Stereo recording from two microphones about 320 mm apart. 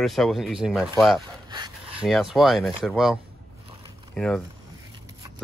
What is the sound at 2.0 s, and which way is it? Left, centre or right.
Speech, centre.